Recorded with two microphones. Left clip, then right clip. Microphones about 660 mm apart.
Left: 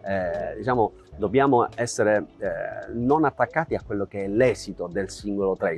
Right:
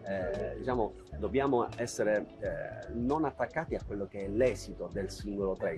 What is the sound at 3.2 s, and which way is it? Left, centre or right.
Speech, left.